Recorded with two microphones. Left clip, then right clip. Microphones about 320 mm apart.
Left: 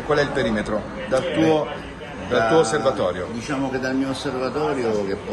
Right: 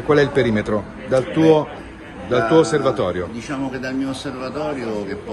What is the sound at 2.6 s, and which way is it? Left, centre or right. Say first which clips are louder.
Speech: right 2 dB; right.